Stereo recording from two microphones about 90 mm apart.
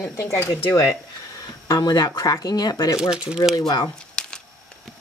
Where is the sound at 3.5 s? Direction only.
45° left (ahead or behind).